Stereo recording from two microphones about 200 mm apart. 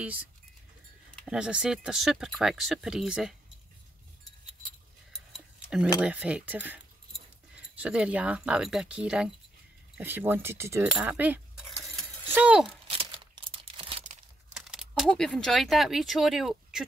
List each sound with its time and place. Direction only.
0.0 s speech: 5° right (ahead or behind)
5.9 s speech: 5° right (ahead or behind)
12.9 s tearing: 30° right (ahead or behind)
14.5 s speech: 5° right (ahead or behind)